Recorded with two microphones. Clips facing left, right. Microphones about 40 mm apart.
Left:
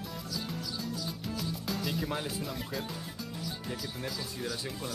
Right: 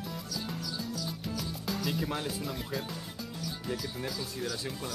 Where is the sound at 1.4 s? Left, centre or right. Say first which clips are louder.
Left 1 dB; centre.